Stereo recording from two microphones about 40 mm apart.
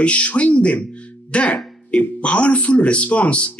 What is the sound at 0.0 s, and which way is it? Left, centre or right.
Speech, left.